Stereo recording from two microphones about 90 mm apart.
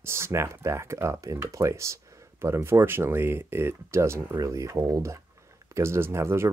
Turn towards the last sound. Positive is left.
turn(degrees=-30)  # may be behind; listen again after turning